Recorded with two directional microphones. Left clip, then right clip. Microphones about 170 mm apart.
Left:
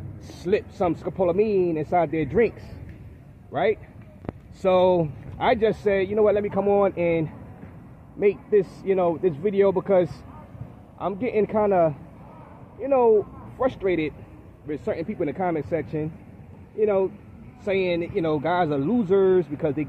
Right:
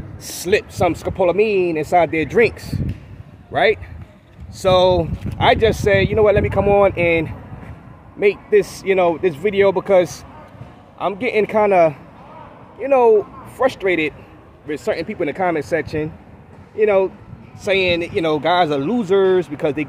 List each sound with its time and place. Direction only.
0.5 s speech: 15° right (ahead or behind)
4.6 s speech: centre (ahead or behind); by 17.1 s 20° right (ahead or behind)
17.6 s speech: 10° right (ahead or behind)